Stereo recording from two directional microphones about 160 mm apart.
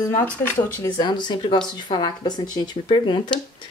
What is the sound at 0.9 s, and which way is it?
Speech, 30° left (ahead or behind).